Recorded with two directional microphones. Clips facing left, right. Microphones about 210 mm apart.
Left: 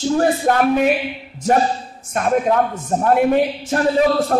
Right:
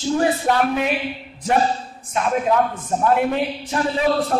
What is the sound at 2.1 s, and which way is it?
Speech, 50° left (ahead or behind).